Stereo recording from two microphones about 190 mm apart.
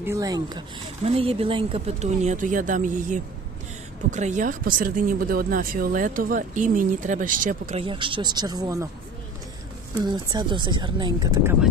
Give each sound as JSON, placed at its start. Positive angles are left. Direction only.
{"t": 0.0, "sound": "speech", "side_deg": -15}
{"t": 1.0, "sound": "speech", "side_deg": -30}
{"t": 9.9, "sound": "speech", "side_deg": -25}